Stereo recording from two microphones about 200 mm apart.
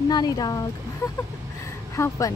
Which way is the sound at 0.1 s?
20° left (ahead or behind).